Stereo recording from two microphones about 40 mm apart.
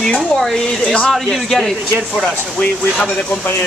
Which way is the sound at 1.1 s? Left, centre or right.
Centre.